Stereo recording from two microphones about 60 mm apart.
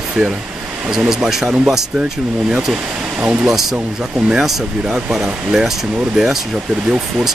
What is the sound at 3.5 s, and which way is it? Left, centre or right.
Speech, centre.